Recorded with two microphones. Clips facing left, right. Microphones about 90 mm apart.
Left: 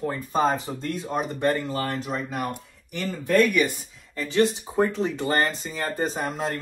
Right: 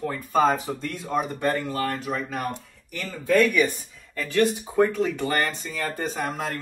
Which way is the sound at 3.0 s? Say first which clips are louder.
Even; 15° left (ahead or behind).